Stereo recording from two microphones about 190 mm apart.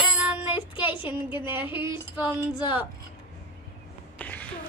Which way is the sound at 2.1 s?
15° right (ahead or behind).